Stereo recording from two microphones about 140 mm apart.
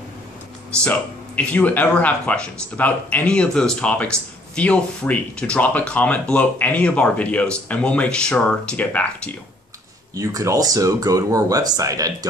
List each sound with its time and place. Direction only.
0.8 s speech: 10° left (ahead or behind)
10.1 s speech: 25° right (ahead or behind)